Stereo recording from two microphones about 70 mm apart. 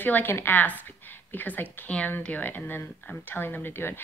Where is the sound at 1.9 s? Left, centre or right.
Centre.